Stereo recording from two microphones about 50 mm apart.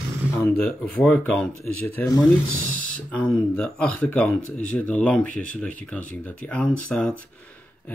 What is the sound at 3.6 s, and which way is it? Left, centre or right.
Speech, left.